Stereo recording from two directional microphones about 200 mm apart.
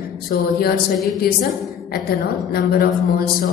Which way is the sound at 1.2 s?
50° left (ahead or behind).